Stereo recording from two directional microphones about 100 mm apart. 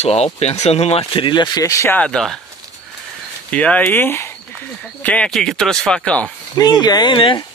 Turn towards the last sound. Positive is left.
turn(degrees=55)  # may be behind; listen again after turning